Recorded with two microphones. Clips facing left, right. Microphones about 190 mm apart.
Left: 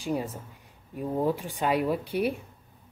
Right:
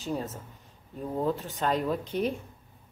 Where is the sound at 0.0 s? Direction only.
15° left (ahead or behind).